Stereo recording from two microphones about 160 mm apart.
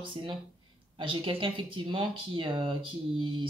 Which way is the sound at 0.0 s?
30° right (ahead or behind).